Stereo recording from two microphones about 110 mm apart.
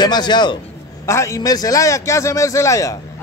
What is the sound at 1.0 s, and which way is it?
A man's voice, 25° left (ahead or behind).